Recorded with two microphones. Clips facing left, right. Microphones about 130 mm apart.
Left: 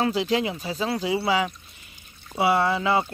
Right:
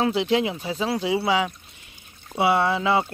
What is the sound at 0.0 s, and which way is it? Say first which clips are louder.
Speech: right 2 dB; 20° right (ahead or behind).